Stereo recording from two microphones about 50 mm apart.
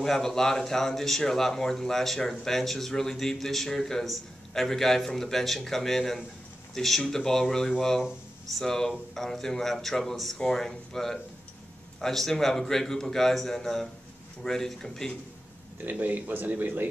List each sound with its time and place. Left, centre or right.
0.0 s speech: centre
15.8 s speech: right